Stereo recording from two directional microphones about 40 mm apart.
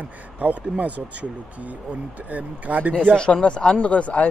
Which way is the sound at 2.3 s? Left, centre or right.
Right.